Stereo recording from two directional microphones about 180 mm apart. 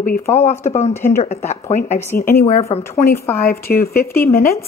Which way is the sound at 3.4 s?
60° left (ahead or behind).